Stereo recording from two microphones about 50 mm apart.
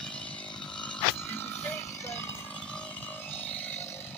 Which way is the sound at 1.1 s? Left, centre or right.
Left.